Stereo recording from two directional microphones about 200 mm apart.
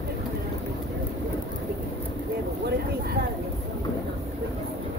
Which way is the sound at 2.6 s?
55° right (ahead or behind).